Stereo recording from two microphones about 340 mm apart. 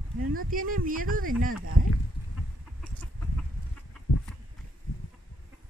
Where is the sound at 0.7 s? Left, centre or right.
Right.